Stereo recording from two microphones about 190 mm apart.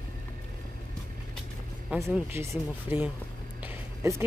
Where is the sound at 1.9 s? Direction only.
10° right (ahead or behind).